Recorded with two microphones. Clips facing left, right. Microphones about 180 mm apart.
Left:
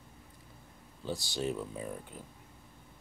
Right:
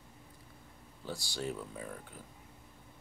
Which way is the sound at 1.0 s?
20° left (ahead or behind).